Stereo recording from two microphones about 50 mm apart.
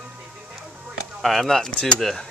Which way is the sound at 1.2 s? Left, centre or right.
Centre.